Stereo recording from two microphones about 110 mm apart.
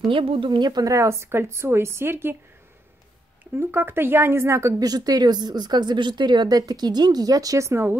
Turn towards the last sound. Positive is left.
turn(degrees=-25)  # may be behind; listen again after turning